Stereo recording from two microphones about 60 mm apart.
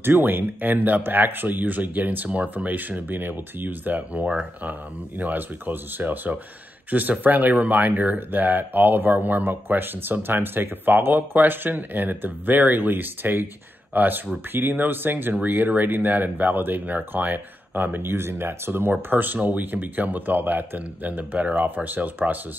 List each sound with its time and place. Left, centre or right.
0.0 s speech: right